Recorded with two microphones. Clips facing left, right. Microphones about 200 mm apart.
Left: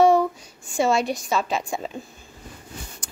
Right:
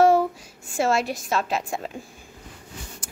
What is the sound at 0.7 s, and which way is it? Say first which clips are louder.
A woman's voice: left 2 dB; 5° right (ahead or behind).